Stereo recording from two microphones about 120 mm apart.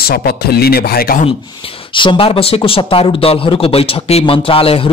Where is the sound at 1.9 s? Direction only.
45° left (ahead or behind).